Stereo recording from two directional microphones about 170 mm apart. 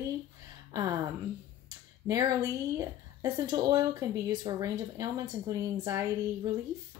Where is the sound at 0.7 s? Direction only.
20° right (ahead or behind).